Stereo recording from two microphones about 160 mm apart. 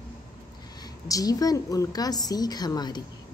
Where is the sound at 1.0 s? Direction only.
20° left (ahead or behind).